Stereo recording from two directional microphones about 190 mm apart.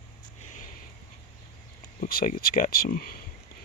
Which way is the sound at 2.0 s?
45° left (ahead or behind).